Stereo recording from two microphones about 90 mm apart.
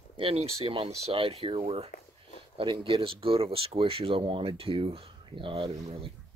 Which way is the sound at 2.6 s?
70° right (ahead or behind).